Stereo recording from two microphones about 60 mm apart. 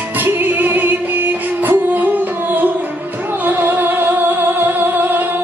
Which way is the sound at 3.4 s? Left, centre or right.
Right.